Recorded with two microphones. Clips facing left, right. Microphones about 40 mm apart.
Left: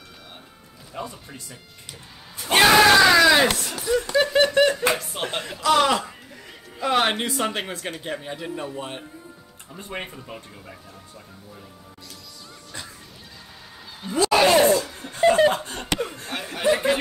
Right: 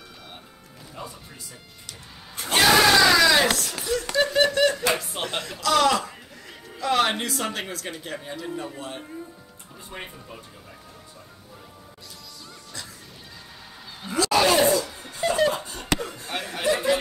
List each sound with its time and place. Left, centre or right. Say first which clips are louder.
1.0 s speech: left 5 dB; left
2.5 s screaming: left 3 dB; centre
4.5 s a man's voice: left 2 dB; left
4.9 s speech: even; centre
5.5 s a man's voice: left 1 dB; left
9.8 s speech: left 5 dB; left
14.1 s a sound: left 3 dB; left
15.1 s chuckle: left 5 dB; left
15.5 s chuckle: left 3 dB; left
16.3 s a sound: right 1 dB; centre
16.6 s a sound: left 3 dB; left